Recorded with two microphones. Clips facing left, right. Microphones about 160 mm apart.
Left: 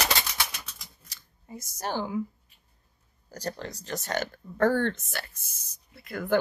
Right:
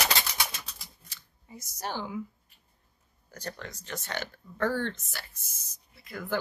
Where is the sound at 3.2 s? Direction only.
35° left (ahead or behind).